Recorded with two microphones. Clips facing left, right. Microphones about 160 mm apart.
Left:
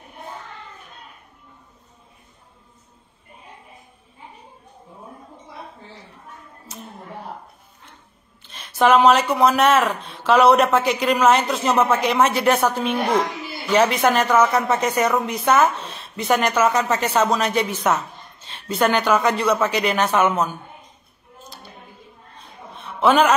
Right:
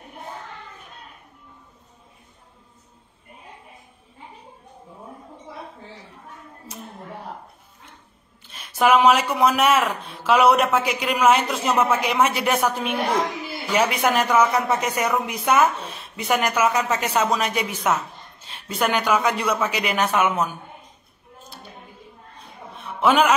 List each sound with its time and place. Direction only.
8.5 s speech: 10° right (ahead or behind)
23.0 s speech: 10° right (ahead or behind)